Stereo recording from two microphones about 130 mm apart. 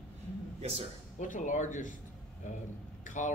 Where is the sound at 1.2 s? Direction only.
80° left.